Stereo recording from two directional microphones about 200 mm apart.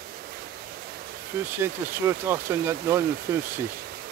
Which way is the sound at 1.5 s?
10° right (ahead or behind).